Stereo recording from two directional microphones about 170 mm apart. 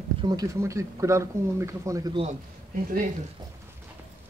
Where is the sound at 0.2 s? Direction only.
20° right (ahead or behind).